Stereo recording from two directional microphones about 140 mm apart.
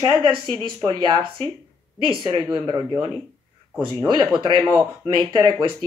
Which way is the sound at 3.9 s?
30° right (ahead or behind).